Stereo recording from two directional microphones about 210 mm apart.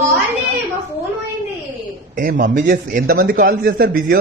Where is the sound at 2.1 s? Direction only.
40° right (ahead or behind).